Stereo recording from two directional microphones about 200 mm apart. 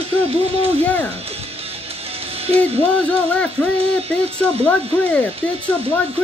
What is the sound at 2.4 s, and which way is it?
Music, 30° right (ahead or behind).